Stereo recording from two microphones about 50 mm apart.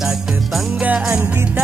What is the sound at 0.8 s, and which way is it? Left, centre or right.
Music, right.